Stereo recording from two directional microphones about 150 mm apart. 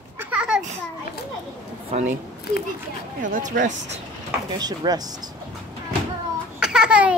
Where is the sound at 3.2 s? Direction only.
60° right (ahead or behind).